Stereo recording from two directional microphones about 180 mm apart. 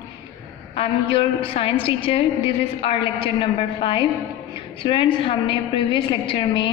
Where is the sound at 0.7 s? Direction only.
30° left (ahead or behind).